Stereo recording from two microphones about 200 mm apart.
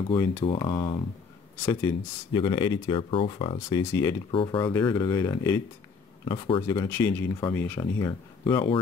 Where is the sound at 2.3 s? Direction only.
25° left (ahead or behind).